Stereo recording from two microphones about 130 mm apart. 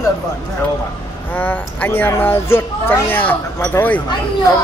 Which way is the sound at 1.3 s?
15° left (ahead or behind).